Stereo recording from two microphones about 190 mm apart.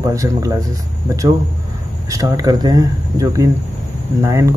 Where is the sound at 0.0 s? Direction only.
15° right (ahead or behind).